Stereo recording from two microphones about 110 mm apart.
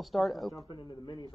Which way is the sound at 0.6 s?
40° left (ahead or behind).